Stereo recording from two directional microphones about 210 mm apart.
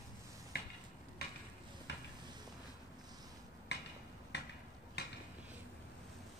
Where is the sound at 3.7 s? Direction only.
55° left (ahead or behind).